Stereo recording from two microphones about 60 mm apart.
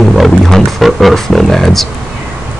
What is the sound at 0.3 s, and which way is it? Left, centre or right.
Music, centre.